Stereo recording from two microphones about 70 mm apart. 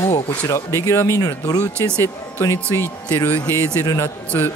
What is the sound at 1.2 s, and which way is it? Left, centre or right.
Speech, left.